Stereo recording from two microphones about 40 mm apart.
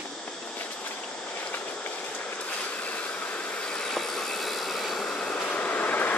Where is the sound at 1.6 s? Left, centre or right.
Left.